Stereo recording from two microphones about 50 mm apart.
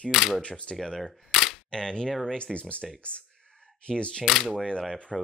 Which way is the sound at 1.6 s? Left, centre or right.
Centre.